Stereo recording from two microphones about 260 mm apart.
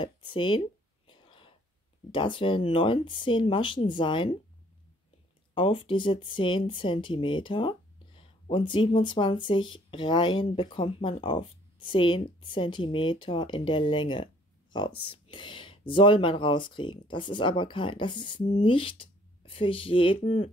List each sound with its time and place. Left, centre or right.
0.0 s a sound: centre
2.1 s speech: centre
5.5 s speech: centre